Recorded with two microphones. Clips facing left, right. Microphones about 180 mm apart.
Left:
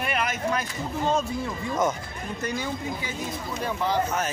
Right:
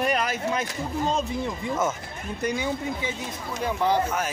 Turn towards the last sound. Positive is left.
turn(degrees=-10)  # may be behind; listen again after turning